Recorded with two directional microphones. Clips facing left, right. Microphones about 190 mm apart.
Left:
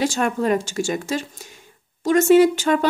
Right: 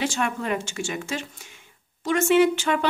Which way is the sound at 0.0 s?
40° left (ahead or behind).